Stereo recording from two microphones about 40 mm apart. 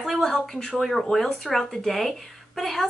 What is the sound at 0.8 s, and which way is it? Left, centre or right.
A woman's voice, centre.